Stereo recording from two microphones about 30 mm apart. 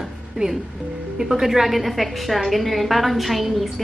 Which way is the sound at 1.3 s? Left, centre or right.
Centre.